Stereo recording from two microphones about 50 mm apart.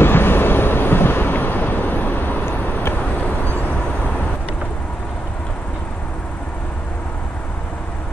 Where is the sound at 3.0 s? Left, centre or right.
Left.